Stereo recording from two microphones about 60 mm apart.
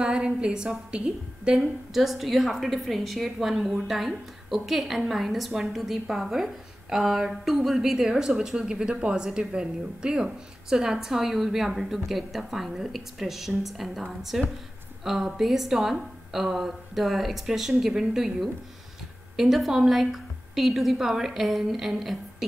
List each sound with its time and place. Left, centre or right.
0.0 s a woman's voice: centre
2.0 s a woman's voice: centre